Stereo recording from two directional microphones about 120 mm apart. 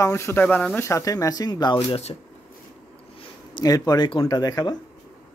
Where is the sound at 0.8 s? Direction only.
25° left (ahead or behind).